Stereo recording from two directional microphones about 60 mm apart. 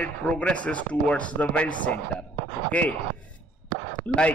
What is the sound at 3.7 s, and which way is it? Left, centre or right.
Chopping, centre.